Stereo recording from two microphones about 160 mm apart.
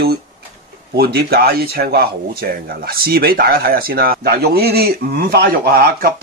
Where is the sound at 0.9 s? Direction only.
80° right.